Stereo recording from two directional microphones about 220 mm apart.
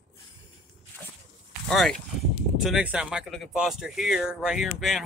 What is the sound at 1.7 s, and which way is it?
Speech, centre (ahead or behind).